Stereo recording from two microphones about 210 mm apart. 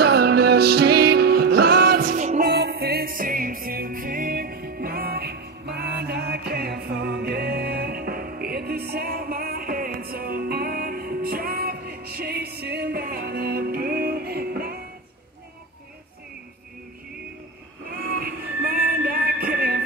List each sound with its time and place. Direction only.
0.0 s music: 50° right (ahead or behind)
17.9 s music: 45° right (ahead or behind)